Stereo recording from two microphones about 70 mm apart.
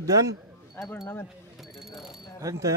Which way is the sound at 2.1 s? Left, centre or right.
Left.